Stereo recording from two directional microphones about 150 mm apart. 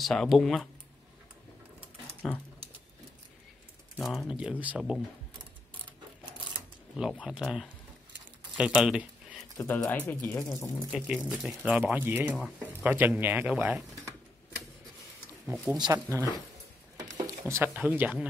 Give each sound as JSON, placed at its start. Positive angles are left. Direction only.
{"t": 0.0, "sound": "speech", "side_deg": 0}
{"t": 2.2, "sound": "speech", "side_deg": 5}
{"t": 4.0, "sound": "speech", "side_deg": 0}
{"t": 7.0, "sound": "speech", "side_deg": -5}
{"t": 9.8, "sound": "speech", "side_deg": 15}
{"t": 10.9, "sound": "speech", "side_deg": -5}
{"t": 15.4, "sound": "speech", "side_deg": 0}
{"t": 16.1, "sound": "speech", "side_deg": -20}
{"t": 17.0, "sound": "a sound", "side_deg": -20}
{"t": 17.7, "sound": "speech", "side_deg": -10}